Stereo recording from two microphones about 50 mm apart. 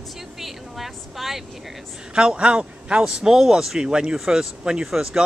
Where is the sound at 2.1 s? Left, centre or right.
Centre.